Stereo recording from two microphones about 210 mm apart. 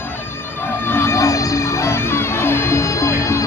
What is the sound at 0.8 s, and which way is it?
Music, 10° left (ahead or behind).